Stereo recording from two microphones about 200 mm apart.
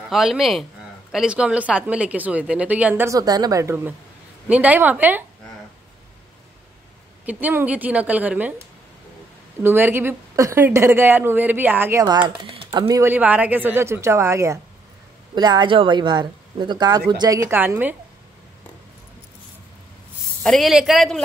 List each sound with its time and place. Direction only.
0.1 s a woman's voice: centre (ahead or behind)
7.2 s a woman's voice: 10° right (ahead or behind)
20.4 s speech: centre (ahead or behind)